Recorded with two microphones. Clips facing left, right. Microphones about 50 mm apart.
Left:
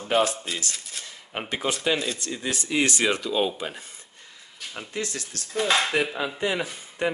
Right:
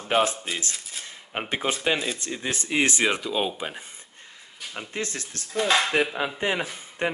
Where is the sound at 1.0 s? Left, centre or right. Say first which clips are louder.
Right 3 dB; right.